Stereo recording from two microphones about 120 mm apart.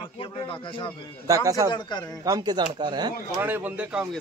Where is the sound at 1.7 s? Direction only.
40° left (ahead or behind).